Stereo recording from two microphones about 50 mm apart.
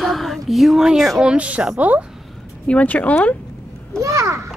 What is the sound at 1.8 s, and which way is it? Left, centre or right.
Speech, right.